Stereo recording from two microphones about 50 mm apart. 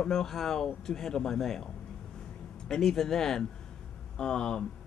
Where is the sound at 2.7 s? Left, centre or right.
Centre.